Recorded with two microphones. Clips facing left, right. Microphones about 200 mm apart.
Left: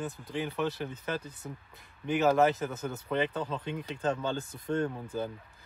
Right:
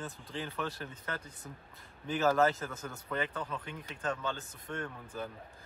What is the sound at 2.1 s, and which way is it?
Speech, 15° left (ahead or behind).